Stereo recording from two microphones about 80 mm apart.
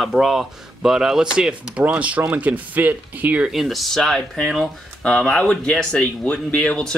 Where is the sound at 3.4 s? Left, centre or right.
Centre.